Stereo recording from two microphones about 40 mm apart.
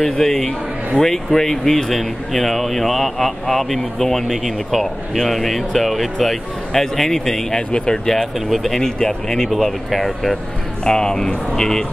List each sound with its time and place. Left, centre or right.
0.0 s speech: centre
8.5 s speech: centre
10.9 s speech: centre